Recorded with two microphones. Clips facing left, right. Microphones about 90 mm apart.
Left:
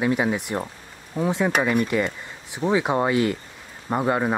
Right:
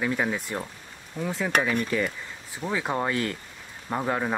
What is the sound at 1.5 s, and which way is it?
Speech, 10° left (ahead or behind).